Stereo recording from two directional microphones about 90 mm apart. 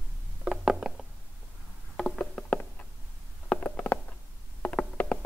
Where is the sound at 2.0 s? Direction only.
10° left (ahead or behind).